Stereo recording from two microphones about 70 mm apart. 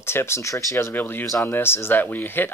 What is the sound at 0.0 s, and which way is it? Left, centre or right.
Speech, left.